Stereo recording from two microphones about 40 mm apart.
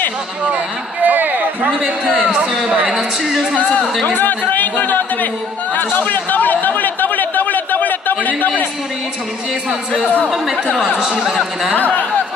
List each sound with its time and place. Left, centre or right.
1.0 s a sound: right
1.8 s a man's voice: centre
2.7 s speech: right
4.2 s a man's voice: left
5.9 s chatter: left
10.3 s speech: centre
11.0 s speech: centre
11.7 s a man's voice: left